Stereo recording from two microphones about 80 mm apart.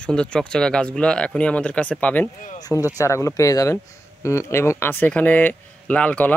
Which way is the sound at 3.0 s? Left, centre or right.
Left.